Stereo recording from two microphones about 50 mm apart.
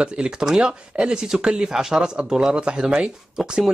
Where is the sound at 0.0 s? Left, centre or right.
Centre.